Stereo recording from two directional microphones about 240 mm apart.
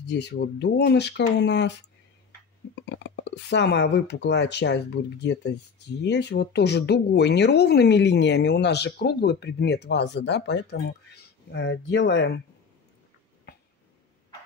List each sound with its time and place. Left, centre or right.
0.1 s speech: left
2.7 s speech: left